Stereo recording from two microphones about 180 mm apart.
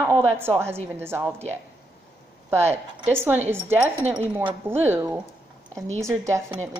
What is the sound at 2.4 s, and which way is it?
Speech, 15° right (ahead or behind).